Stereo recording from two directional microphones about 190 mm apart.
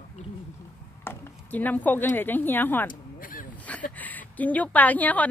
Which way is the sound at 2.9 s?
45° left (ahead or behind).